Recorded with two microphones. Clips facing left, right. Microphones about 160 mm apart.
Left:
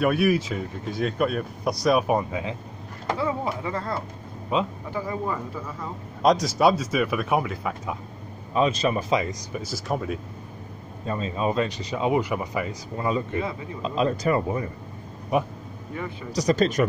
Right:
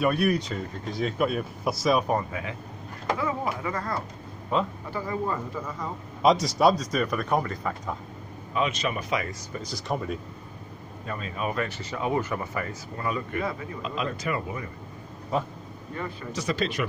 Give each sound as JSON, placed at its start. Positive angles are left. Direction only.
{"t": 0.0, "sound": "speech", "side_deg": 0}
{"t": 2.0, "sound": "speech", "side_deg": 15}
{"t": 3.1, "sound": "a sound", "side_deg": 25}
{"t": 3.6, "sound": "speech", "side_deg": 25}
{"t": 5.3, "sound": "speech", "side_deg": 0}
{"t": 8.5, "sound": "speech", "side_deg": 35}
{"t": 9.6, "sound": "speech", "side_deg": 5}
{"t": 11.1, "sound": "speech", "side_deg": 25}
{"t": 15.3, "sound": "speech", "side_deg": 20}
{"t": 16.3, "sound": "speech", "side_deg": 40}